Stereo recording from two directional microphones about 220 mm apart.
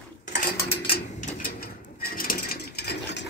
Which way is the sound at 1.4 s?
40° left (ahead or behind).